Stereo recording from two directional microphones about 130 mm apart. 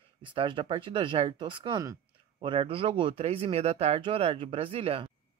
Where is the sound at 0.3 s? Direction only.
40° right (ahead or behind).